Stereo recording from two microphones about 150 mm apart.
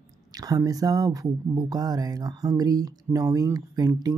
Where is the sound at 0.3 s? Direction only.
25° right (ahead or behind).